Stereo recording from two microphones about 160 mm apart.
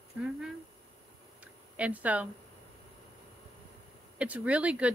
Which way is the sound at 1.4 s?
10° right (ahead or behind).